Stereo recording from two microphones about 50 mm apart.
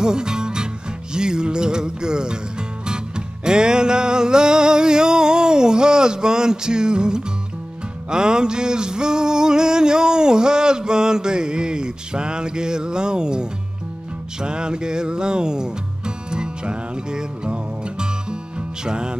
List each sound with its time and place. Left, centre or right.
0.0 s music: centre
3.4 s music: centre
8.1 s a sound: centre
16.3 s music: centre